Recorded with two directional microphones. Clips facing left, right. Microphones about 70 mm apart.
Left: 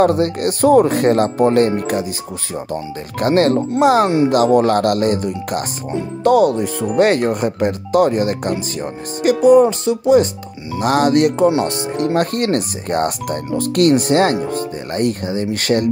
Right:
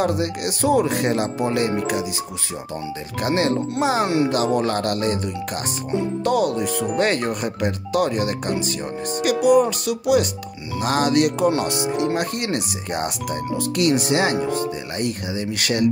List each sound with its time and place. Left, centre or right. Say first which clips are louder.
0.0 s speech: left 7 dB; left
3.2 s speech: left 7 dB; left
10.8 s speech: left 5 dB; left